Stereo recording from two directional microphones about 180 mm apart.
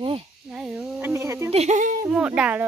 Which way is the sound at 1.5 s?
40° right (ahead or behind).